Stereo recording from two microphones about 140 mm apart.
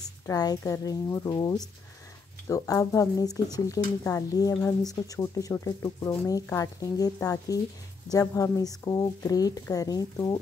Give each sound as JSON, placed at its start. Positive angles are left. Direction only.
{"t": 0.3, "sound": "speech", "side_deg": 25}